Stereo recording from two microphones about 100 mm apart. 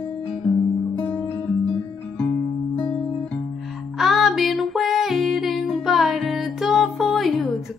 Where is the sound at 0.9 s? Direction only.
20° left (ahead or behind).